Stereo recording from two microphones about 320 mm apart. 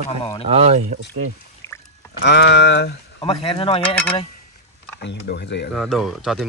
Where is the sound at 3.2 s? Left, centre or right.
Centre.